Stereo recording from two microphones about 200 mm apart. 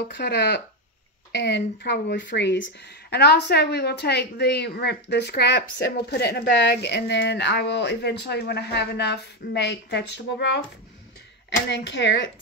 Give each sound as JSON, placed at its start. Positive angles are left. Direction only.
{"t": 0.1, "sound": "speech", "side_deg": 60}
{"t": 11.7, "sound": "speech", "side_deg": 60}